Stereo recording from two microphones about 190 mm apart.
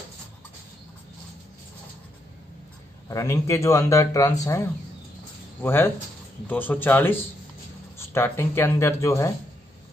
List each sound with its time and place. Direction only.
3.1 s a man's voice: 15° left (ahead or behind)